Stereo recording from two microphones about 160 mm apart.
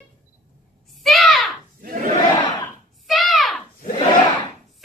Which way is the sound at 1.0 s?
Centre (ahead or behind).